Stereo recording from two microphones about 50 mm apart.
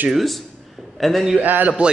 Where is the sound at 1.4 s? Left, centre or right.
Right.